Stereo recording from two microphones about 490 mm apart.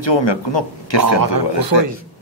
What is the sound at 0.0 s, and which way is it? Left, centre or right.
Speech, left.